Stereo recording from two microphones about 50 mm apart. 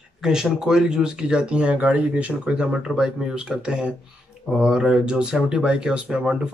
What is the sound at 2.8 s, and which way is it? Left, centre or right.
Speech, centre.